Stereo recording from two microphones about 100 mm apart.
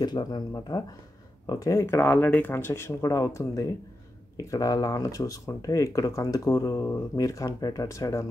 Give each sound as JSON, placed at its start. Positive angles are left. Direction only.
{"t": 0.0, "sound": "speech", "side_deg": 45}